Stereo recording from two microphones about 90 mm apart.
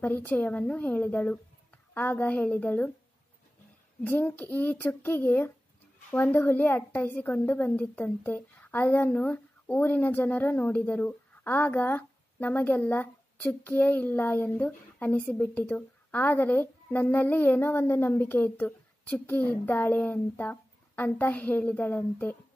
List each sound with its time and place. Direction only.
0.0 s a woman's voice: 20° left (ahead or behind)
4.0 s a woman's voice: 20° left (ahead or behind)